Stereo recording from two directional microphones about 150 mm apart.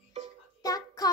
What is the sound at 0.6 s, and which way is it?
Child singing, 25° left (ahead or behind).